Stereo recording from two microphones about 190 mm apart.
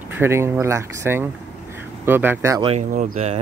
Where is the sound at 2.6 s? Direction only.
40° right (ahead or behind).